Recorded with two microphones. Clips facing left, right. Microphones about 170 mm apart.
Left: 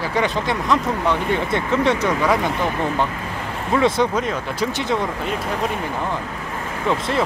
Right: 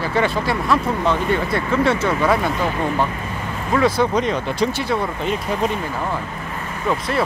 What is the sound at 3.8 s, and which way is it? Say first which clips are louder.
Speech: even; 25° left (ahead or behind).